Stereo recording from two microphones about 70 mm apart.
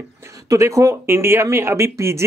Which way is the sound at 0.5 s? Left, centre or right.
Right.